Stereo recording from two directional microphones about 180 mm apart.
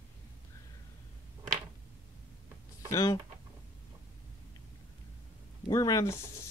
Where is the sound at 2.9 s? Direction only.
20° left (ahead or behind).